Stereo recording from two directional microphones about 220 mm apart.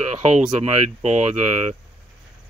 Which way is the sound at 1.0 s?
30° right (ahead or behind).